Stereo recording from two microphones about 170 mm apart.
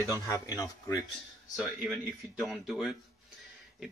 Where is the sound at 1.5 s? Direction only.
Centre (ahead or behind).